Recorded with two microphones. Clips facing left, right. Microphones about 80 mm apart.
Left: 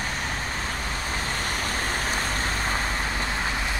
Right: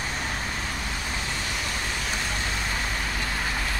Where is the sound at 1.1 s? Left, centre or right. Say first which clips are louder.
Left 2 dB; left.